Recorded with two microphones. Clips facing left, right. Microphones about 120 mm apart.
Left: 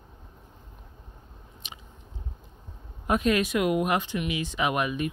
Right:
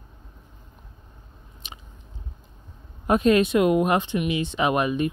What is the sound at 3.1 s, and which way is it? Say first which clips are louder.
Speech: right 5 dB; 30° right (ahead or behind).